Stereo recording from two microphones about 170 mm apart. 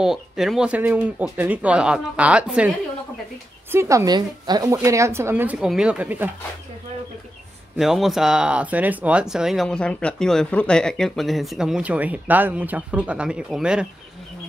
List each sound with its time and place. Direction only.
0.0 s speech: centre (ahead or behind)
3.7 s speech: 15° right (ahead or behind)
7.7 s speech: centre (ahead or behind)